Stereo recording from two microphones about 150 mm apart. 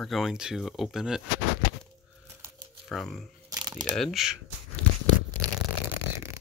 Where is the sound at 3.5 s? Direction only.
25° right (ahead or behind).